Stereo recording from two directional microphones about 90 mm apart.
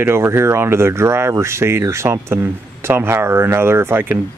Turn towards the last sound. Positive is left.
turn(degrees=-25)  # may be behind; listen again after turning